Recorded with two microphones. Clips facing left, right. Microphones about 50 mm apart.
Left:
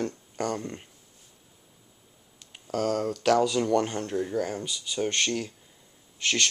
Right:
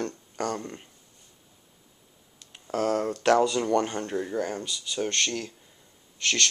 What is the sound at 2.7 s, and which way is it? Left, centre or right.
Speech, right.